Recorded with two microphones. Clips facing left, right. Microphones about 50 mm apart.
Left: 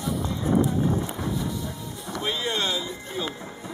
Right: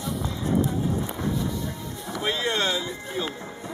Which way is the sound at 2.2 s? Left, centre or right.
Right.